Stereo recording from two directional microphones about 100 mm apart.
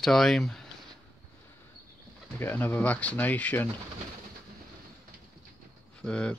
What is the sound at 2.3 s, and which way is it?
Speech, 20° left (ahead or behind).